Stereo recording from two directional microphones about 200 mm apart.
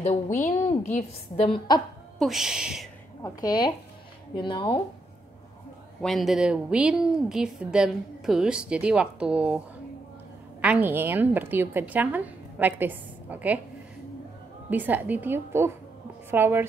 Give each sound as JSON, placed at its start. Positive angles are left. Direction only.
{"t": 0.0, "sound": "a woman's voice", "side_deg": 35}
{"t": 2.1, "sound": "a woman's voice", "side_deg": 0}
{"t": 3.2, "sound": "speech", "side_deg": 15}
{"t": 5.9, "sound": "a woman's voice", "side_deg": 0}
{"t": 10.6, "sound": "a woman's voice", "side_deg": -10}
{"t": 14.7, "sound": "a woman's voice", "side_deg": -10}